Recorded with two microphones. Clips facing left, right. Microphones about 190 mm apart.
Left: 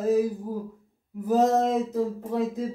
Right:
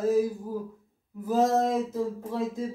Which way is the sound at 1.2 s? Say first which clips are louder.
Left 2 dB; 20° left (ahead or behind).